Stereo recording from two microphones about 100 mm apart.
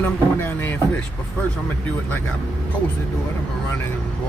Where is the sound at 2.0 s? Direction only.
20° left (ahead or behind).